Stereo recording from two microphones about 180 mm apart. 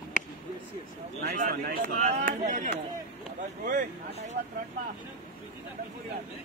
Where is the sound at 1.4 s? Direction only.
50° right (ahead or behind).